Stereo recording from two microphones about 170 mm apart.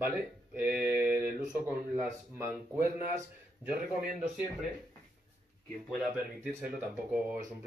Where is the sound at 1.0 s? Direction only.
15° right (ahead or behind).